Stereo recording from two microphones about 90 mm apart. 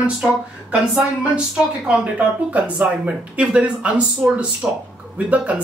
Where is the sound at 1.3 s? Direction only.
10° right (ahead or behind).